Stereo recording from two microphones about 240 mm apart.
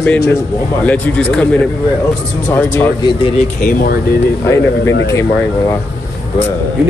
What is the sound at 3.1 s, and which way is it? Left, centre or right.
Speech, left.